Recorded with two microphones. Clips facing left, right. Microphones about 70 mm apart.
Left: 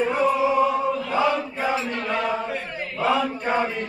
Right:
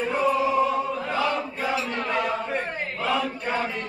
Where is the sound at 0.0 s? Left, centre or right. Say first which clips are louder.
Left 2 dB; centre.